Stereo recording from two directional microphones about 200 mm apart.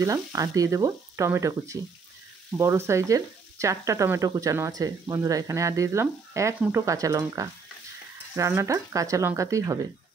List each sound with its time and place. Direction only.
0.0 s speech: 15° right (ahead or behind)